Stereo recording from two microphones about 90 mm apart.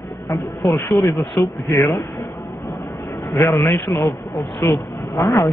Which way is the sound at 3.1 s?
35° left (ahead or behind).